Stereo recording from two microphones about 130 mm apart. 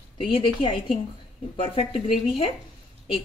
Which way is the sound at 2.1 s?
Centre (ahead or behind).